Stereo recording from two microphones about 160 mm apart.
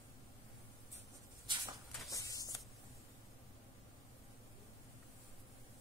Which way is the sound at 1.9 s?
Centre (ahead or behind).